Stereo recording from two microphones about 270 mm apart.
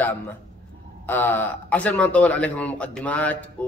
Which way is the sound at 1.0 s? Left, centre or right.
Centre.